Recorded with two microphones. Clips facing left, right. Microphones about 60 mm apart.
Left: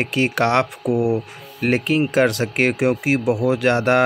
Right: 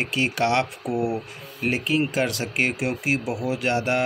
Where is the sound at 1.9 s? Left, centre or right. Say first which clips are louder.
Left 7 dB; left.